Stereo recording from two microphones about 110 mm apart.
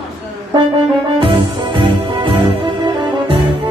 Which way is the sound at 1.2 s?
50° right (ahead or behind).